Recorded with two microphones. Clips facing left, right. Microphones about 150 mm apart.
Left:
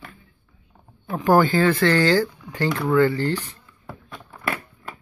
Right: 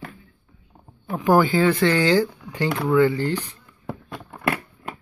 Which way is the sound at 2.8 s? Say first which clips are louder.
Right 1 dB; 15° right (ahead or behind).